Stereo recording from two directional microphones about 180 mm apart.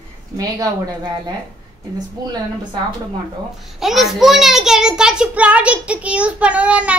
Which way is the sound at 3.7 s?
Centre (ahead or behind).